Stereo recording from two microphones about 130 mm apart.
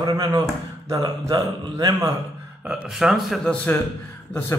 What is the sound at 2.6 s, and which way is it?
A man's voice, 10° right (ahead or behind).